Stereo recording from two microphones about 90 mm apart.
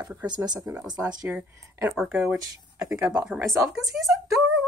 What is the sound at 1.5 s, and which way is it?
Speech, 35° right (ahead or behind).